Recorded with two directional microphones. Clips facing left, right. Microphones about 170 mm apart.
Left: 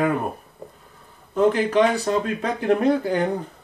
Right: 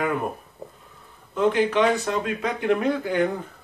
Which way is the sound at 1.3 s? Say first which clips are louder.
Left 2 dB; 40° left (ahead or behind).